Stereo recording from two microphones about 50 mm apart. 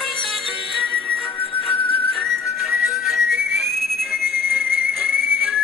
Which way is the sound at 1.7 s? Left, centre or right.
Left.